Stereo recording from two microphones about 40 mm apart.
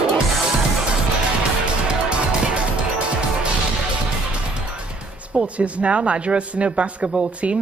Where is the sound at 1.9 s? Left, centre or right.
Right.